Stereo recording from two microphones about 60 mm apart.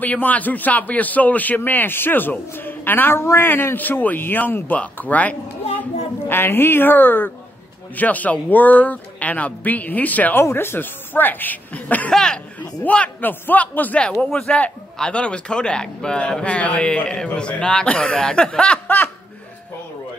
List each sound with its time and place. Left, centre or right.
0.0 s a man's voice: left
6.2 s a man's voice: left
10.5 s a man's voice: left
12.1 s a man's voice: centre
12.5 s a man's voice: left
14.2 s a man's voice: centre